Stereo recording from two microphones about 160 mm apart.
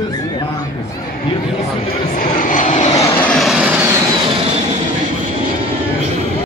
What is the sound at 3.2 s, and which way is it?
Vehicle, 5° left (ahead or behind).